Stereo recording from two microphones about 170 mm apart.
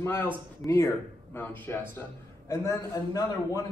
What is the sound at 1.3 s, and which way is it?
A man's voice, 10° left (ahead or behind).